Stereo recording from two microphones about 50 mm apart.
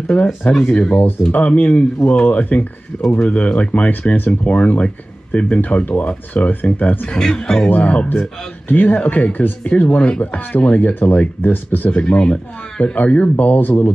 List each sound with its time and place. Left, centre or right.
0.7 s speech: left
7.2 s speech: centre
7.7 s speech: left
9.8 s speech: left
11.9 s speech: left